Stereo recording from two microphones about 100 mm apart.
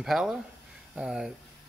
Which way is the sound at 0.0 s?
5° right (ahead or behind).